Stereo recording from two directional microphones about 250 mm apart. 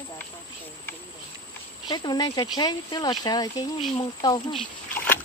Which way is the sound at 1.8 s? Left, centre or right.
Centre.